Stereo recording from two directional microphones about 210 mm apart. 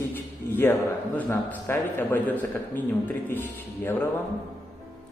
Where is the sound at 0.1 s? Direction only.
10° left (ahead or behind).